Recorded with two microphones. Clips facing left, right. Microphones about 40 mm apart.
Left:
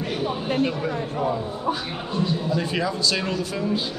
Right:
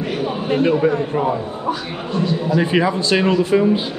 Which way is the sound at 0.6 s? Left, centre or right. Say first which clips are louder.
Right 11 dB; right.